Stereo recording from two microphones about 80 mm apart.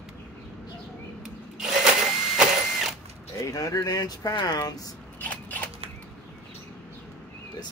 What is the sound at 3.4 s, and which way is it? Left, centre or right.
Speech, left.